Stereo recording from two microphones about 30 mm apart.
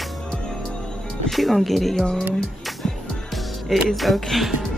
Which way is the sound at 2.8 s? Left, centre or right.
Left.